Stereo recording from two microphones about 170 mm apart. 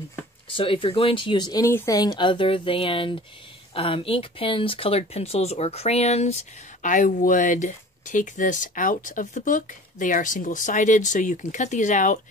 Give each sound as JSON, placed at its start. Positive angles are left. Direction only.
{"t": 0.5, "sound": "speech", "side_deg": 30}